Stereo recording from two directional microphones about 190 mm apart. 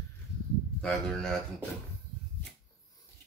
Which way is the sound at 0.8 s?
5° left (ahead or behind).